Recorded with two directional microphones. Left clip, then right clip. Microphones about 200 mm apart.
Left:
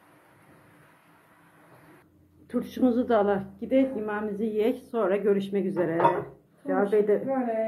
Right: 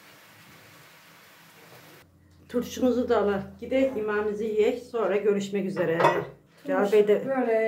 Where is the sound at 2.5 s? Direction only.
20° left (ahead or behind).